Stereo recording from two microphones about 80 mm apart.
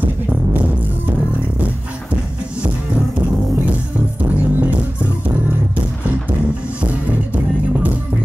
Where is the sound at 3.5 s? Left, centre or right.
Centre.